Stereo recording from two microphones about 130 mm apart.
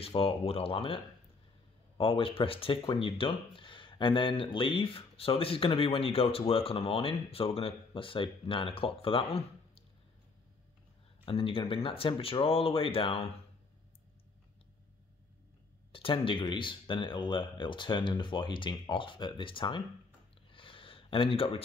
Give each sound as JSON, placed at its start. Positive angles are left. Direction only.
{"t": 0.0, "sound": "speech", "side_deg": 45}
{"t": 11.2, "sound": "speech", "side_deg": 45}
{"t": 15.9, "sound": "speech", "side_deg": 40}
{"t": 20.5, "sound": "a sound", "side_deg": 40}